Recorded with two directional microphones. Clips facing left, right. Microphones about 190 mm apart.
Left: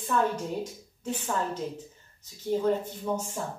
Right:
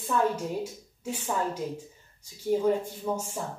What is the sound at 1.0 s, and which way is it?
Speech, 10° right (ahead or behind).